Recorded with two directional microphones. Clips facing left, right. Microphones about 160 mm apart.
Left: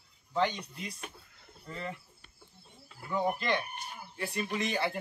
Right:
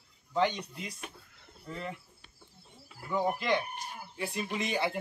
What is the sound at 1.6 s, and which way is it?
Speech, 10° right (ahead or behind).